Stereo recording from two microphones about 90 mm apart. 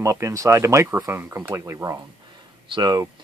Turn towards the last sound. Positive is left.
turn(degrees=-50)  # may be behind; listen again after turning